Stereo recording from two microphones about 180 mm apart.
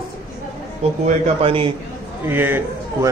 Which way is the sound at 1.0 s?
30° right (ahead or behind).